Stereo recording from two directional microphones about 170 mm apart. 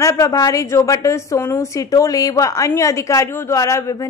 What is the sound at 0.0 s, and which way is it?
A woman's voice, 20° left (ahead or behind).